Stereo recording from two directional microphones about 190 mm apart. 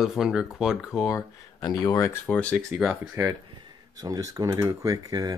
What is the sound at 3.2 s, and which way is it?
Speech, 15° right (ahead or behind).